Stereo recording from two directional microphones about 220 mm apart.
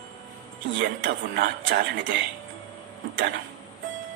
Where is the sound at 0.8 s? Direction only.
35° right (ahead or behind).